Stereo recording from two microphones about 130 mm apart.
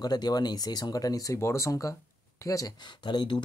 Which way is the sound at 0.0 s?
30° left (ahead or behind).